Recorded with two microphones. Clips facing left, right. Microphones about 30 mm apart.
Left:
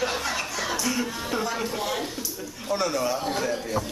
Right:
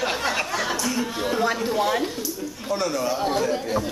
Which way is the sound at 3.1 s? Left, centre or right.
Centre.